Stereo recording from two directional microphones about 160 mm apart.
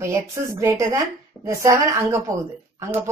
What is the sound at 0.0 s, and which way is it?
A woman's voice, 20° right (ahead or behind).